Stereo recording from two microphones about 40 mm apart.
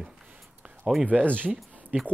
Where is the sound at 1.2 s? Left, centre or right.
Right.